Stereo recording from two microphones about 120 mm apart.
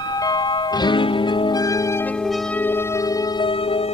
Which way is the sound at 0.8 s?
45° left (ahead or behind).